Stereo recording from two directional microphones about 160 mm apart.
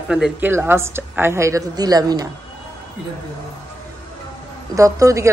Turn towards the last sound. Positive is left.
turn(degrees=-20)  # may be behind; listen again after turning